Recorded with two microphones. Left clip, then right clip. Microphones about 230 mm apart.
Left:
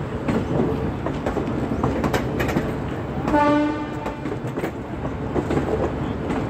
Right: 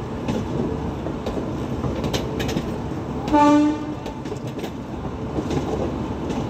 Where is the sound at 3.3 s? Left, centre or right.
Right.